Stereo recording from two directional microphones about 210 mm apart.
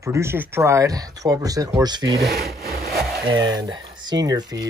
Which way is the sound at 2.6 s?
45° right (ahead or behind).